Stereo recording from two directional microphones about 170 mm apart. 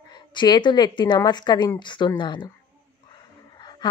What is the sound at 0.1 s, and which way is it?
Speech, 25° left (ahead or behind).